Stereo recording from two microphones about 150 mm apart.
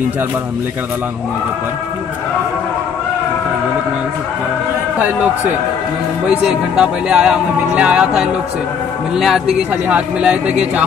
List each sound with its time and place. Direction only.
4.9 s speech: 10° right (ahead or behind)
9.1 s speech: centre (ahead or behind)